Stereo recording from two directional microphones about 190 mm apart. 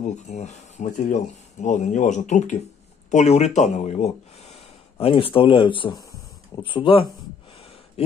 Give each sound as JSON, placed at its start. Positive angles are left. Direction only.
{"t": 0.0, "sound": "speech", "side_deg": 35}